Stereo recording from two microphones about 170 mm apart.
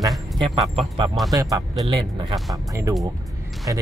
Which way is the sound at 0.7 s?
30° right (ahead or behind).